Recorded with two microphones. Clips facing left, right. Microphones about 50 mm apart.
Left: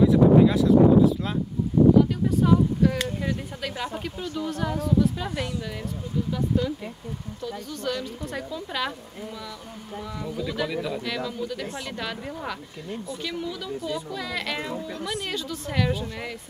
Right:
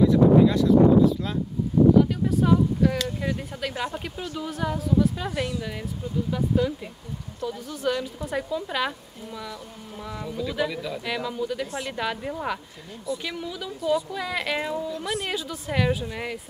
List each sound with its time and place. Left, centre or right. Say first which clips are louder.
0.0 s a woman's voice: even; centre
10.1 s speech: right 2 dB; centre
11.1 s a woman's voice: right 2 dB; centre
12.9 s speech: right 3 dB; left
13.2 s a woman's voice: left 1 dB; centre
15.0 s speech: right 2 dB; right
15.2 s a woman's voice: right 1 dB; centre